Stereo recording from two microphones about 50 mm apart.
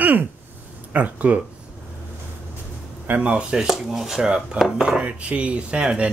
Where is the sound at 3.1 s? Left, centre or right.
Right.